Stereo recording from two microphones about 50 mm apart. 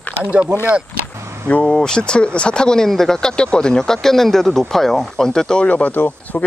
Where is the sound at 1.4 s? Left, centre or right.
Left.